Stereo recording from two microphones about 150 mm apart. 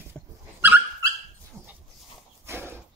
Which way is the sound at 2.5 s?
15° right (ahead or behind).